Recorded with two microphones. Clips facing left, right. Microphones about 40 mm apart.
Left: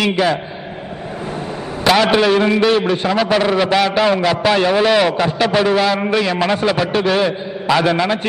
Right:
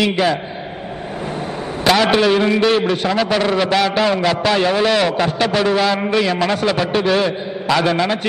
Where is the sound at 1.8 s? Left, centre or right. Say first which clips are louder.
Left 1 dB; centre.